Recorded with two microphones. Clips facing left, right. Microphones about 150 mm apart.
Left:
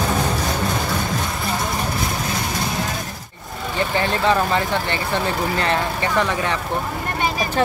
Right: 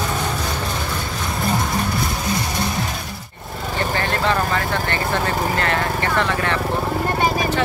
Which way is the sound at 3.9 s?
20° left (ahead or behind).